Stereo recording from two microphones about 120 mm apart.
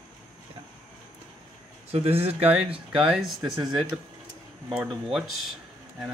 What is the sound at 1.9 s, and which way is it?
Speech, 55° right (ahead or behind).